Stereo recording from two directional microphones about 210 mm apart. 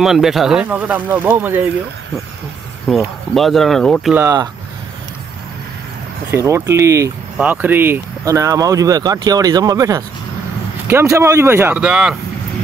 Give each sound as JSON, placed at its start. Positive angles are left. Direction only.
{"t": 0.0, "sound": "speech", "side_deg": 0}
{"t": 2.9, "sound": "speech", "side_deg": 0}
{"t": 4.1, "sound": "speech", "side_deg": -15}
{"t": 6.3, "sound": "speech", "side_deg": -15}